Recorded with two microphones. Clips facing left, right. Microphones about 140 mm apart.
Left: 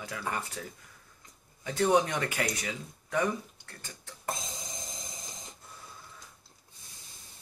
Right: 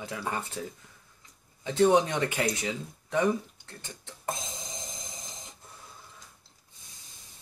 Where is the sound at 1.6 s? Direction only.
20° right (ahead or behind).